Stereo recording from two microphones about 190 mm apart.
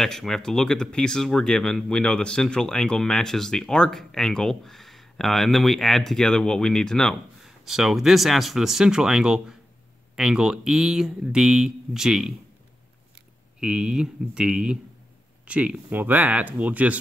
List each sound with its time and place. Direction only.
0.0 s speech: centre (ahead or behind)
13.6 s speech: 5° right (ahead or behind)